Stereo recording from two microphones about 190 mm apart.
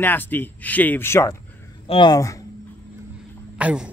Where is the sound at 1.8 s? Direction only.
25° left (ahead or behind).